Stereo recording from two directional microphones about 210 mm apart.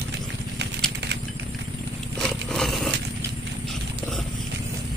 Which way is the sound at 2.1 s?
Centre (ahead or behind).